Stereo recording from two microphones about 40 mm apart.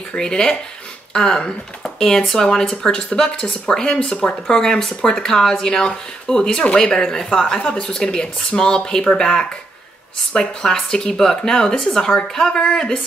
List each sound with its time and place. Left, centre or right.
0.1 s speech: centre